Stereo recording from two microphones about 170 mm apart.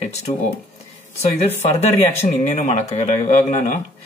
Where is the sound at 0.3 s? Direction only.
40° left (ahead or behind).